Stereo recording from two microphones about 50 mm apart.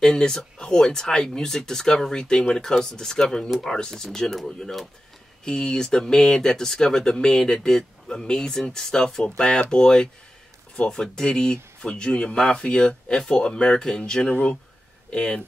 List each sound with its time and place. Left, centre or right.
0.0 s speech: centre